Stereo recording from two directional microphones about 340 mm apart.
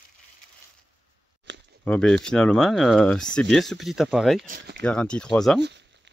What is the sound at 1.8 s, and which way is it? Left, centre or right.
Speech, centre.